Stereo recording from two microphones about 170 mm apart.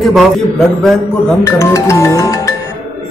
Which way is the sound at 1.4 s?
15° left (ahead or behind).